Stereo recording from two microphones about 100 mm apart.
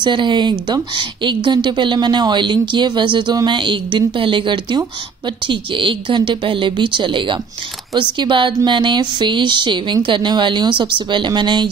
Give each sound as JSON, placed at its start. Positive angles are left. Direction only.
{"t": 0.0, "sound": "a woman's voice", "side_deg": -50}